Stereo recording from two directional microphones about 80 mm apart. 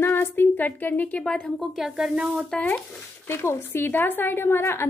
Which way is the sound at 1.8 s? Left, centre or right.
Centre.